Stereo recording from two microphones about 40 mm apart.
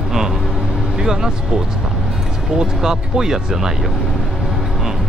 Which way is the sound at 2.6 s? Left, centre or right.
Centre.